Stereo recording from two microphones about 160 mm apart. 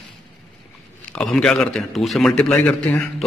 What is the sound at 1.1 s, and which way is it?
A man's voice, 5° left (ahead or behind).